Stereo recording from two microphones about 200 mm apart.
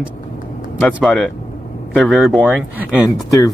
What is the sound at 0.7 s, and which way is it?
Speech, centre (ahead or behind).